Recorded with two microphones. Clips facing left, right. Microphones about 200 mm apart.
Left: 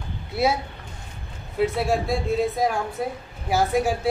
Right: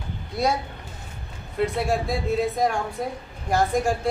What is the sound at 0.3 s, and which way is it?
Speech, 5° left (ahead or behind).